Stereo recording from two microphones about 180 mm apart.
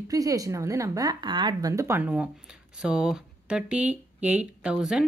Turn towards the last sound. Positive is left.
turn(degrees=-5)  # may be behind; listen again after turning